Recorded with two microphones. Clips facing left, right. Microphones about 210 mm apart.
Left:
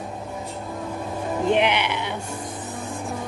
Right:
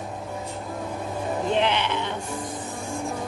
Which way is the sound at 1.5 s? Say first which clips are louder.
Left 1 dB; 15° left (ahead or behind).